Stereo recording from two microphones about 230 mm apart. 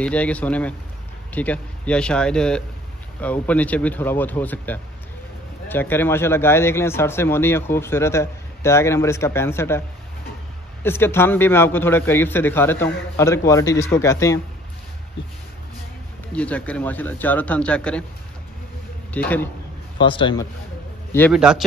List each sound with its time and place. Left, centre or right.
0.0 s a man's voice: centre
16.3 s a man's voice: centre
19.1 s speech: centre
20.0 s a man's voice: left
21.3 s a man's voice: centre